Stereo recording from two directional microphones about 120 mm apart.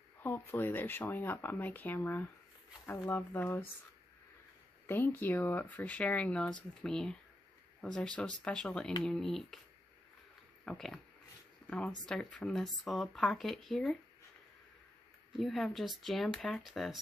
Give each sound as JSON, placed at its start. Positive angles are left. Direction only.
{"t": 0.2, "sound": "speech", "side_deg": 15}
{"t": 4.8, "sound": "speech", "side_deg": 15}
{"t": 10.6, "sound": "speech", "side_deg": 5}
{"t": 11.6, "sound": "a sound", "side_deg": 10}
{"t": 12.1, "sound": "speech", "side_deg": 5}
{"t": 15.3, "sound": "speech", "side_deg": 0}